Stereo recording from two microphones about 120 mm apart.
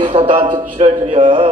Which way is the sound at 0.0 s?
45° right (ahead or behind).